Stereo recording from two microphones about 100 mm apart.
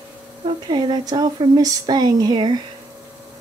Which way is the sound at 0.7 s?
45° right (ahead or behind).